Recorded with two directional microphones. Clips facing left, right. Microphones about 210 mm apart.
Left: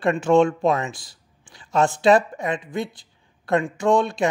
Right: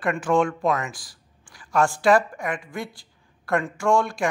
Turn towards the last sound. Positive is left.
turn(degrees=20)  # may be behind; listen again after turning